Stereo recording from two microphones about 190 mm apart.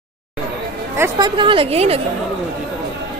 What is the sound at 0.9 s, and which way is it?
A woman's voice, 15° right (ahead or behind).